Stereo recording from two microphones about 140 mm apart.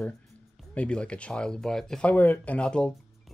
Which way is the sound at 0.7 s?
10° left (ahead or behind).